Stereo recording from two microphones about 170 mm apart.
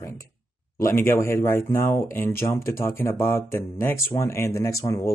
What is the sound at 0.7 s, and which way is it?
Speech, 15° left (ahead or behind).